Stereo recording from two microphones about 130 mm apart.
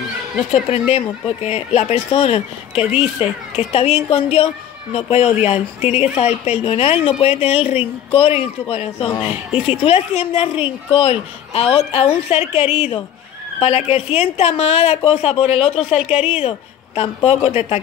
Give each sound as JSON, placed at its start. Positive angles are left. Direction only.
{"t": 0.5, "sound": "speech", "side_deg": 55}
{"t": 2.8, "sound": "a child's voice", "side_deg": -5}
{"t": 3.2, "sound": "speech", "side_deg": 50}